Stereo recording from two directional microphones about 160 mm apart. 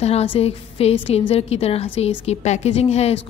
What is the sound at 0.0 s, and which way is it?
Speech, 40° left (ahead or behind).